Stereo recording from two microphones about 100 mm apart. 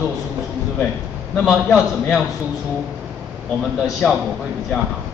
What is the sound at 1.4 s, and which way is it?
Speech, 5° left (ahead or behind).